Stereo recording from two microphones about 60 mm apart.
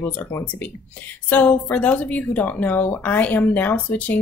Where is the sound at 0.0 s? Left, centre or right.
Left.